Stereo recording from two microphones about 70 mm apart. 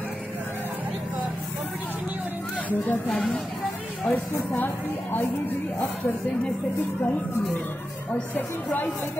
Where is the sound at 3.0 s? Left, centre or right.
Centre.